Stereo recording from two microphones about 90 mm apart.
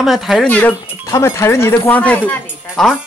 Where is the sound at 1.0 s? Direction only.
35° left (ahead or behind).